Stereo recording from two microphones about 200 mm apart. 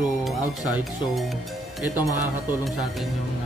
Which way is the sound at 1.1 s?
Centre (ahead or behind).